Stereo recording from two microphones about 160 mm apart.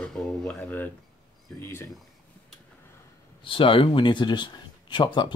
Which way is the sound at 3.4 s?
35° left (ahead or behind).